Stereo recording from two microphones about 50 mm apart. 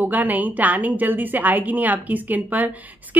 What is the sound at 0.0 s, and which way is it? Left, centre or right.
A woman's voice, right.